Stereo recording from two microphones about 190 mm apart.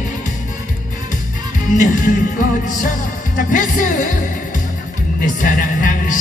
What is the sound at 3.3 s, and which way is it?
Music, 45° left (ahead or behind).